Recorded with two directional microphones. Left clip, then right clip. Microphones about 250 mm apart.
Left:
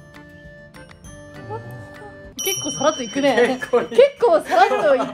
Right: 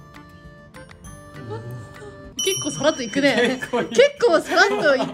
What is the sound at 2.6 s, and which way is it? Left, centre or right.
Speech, left.